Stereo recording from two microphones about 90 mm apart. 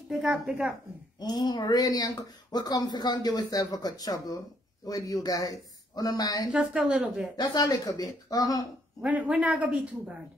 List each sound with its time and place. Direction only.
0.1 s a woman's voice: 5° right (ahead or behind)
1.2 s speech: 50° left (ahead or behind)
6.7 s speech: 10° right (ahead or behind)
7.3 s speech: 50° left (ahead or behind)
9.0 s speech: 15° right (ahead or behind)